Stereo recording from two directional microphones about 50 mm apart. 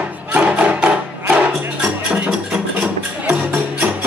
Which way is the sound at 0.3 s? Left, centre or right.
Right.